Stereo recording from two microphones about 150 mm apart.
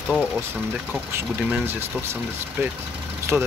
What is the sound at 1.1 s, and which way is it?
Speech, 10° right (ahead or behind).